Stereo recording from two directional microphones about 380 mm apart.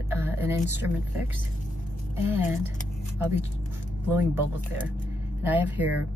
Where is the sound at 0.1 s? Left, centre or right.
Centre.